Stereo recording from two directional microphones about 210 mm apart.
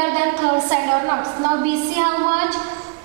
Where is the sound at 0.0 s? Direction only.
15° right (ahead or behind).